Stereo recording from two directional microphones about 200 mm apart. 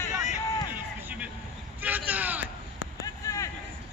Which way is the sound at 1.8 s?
10° right (ahead or behind).